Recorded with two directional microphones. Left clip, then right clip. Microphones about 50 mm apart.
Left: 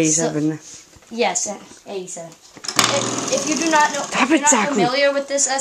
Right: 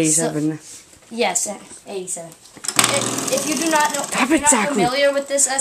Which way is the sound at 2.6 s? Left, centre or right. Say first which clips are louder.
Even; right.